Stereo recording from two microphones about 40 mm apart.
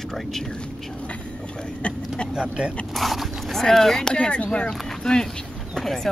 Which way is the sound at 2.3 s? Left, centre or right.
Right.